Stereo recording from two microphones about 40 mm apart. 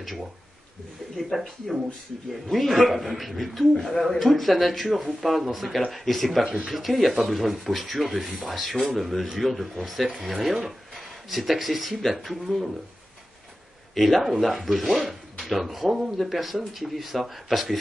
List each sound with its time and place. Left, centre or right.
1.3 s speech: centre
6.4 s speech: centre
6.7 s speech: centre
13.9 s speech: centre